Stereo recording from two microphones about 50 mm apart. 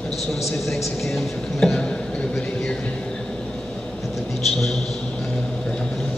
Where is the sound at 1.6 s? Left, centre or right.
Centre.